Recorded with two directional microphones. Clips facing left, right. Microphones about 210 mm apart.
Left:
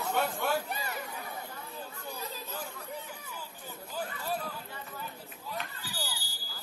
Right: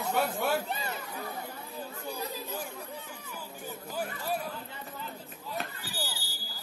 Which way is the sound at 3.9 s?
10° right (ahead or behind).